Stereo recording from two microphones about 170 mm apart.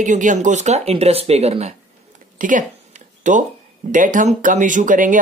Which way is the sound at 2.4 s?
50° right (ahead or behind).